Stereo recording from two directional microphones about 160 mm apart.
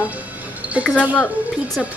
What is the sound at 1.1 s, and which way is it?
Speech, 10° left (ahead or behind).